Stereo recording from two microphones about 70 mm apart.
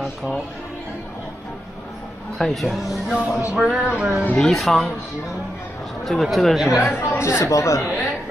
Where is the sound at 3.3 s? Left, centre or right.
Left.